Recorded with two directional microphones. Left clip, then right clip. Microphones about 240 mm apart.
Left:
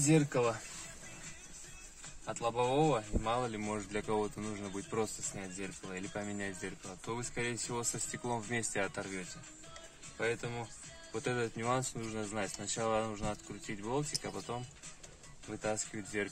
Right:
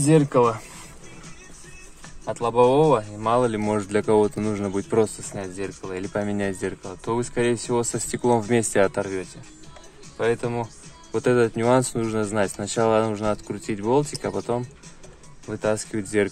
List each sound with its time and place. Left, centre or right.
0.0 s speech: right
2.2 s speech: right
15.6 s speech: right